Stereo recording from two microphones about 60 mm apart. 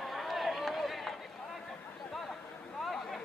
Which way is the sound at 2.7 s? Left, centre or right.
Centre.